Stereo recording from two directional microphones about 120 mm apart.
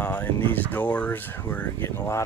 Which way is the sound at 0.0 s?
15° left (ahead or behind).